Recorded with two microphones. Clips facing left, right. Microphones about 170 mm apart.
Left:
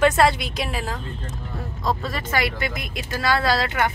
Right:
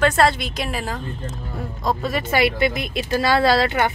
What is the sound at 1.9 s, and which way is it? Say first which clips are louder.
Speech: right 3 dB; 15° right (ahead or behind).